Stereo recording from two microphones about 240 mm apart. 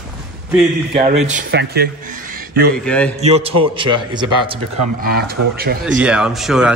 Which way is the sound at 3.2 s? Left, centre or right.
Right.